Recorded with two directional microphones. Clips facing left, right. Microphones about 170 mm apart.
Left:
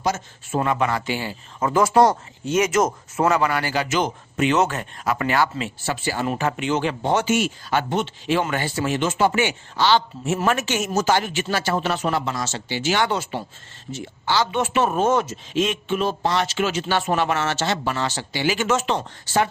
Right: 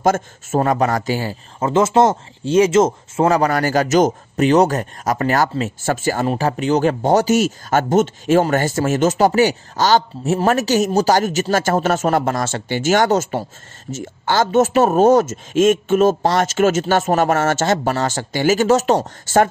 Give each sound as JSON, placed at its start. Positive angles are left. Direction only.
{"t": 0.0, "sound": "speech", "side_deg": -45}
{"t": 1.6, "sound": "speech", "side_deg": -25}
{"t": 6.2, "sound": "speech", "side_deg": -35}